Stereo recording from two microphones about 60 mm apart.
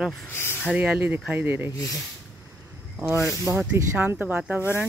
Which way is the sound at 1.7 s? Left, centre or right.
Left.